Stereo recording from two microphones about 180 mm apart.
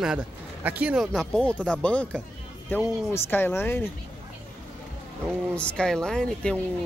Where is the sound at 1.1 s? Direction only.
5° left (ahead or behind).